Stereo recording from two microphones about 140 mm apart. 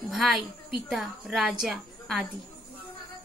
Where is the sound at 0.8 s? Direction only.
Centre (ahead or behind).